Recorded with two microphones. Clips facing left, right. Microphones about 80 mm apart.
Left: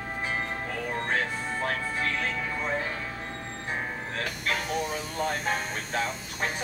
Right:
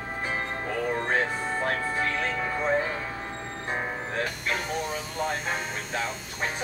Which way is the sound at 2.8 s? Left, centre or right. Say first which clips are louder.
Right 4 dB; centre.